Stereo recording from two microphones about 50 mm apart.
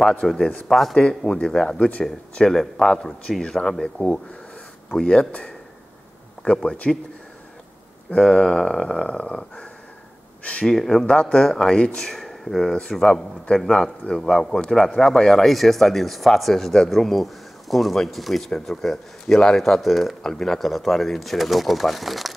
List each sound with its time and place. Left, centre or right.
0.4 s speech: centre
1.8 s speech: left
2.3 s speech: centre
8.1 s speech: centre
10.7 s speech: centre
11.1 s speech: left
12.1 s speech: centre